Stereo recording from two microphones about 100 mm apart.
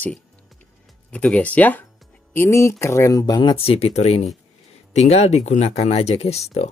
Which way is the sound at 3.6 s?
75° left (ahead or behind).